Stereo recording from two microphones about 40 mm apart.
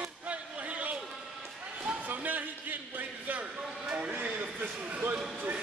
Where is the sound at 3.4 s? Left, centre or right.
Right.